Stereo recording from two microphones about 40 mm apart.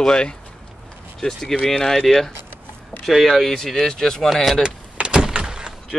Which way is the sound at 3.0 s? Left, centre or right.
Centre.